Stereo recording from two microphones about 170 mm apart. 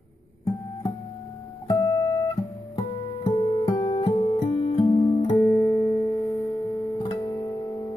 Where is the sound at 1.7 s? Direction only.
20° left (ahead or behind).